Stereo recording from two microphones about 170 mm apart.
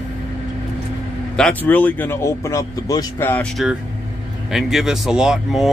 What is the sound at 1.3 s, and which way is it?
Speech, 5° left (ahead or behind).